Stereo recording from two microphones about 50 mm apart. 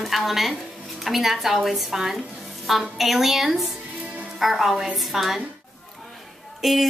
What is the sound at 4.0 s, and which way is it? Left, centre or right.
Music, right.